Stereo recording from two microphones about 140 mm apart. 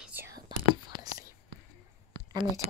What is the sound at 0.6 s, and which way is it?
Whispering, 25° right (ahead or behind).